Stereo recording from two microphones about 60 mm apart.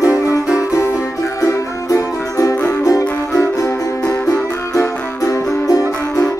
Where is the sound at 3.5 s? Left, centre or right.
Left.